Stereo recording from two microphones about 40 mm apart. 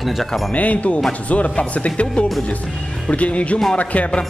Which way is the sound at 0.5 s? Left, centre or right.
Left.